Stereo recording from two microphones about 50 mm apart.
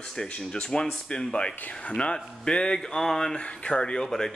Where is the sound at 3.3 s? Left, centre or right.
Centre.